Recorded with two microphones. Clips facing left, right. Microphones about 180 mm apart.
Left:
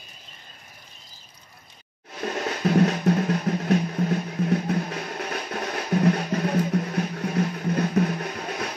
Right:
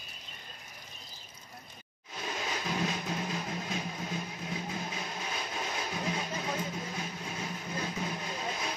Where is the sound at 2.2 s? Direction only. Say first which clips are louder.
Left 10 dB; 65° left (ahead or behind).